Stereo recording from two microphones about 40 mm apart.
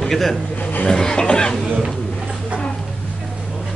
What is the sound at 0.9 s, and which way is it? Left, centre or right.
Cough, centre.